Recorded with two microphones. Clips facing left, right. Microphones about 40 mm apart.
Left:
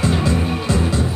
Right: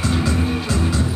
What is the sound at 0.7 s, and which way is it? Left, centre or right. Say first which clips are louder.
Music: left 2 dB; centre.